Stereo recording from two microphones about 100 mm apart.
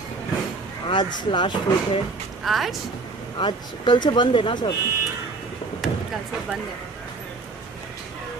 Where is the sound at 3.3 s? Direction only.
50° left (ahead or behind).